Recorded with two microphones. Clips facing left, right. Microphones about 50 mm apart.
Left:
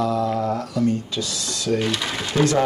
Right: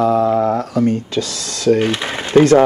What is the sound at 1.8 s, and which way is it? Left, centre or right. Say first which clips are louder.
Speech: right 5 dB; right.